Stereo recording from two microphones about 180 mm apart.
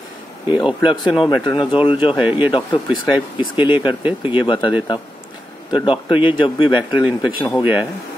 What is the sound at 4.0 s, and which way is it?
Speech, 10° right (ahead or behind).